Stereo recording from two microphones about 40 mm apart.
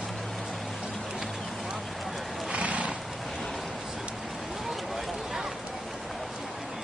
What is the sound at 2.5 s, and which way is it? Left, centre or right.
Horse, right.